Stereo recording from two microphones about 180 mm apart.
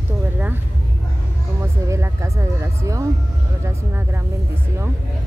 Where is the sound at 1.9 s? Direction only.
15° right (ahead or behind).